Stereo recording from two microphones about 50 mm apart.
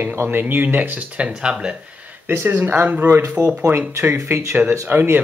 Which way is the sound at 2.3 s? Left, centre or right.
Right.